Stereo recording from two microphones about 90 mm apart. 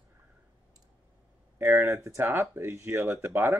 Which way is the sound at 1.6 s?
30° right (ahead or behind).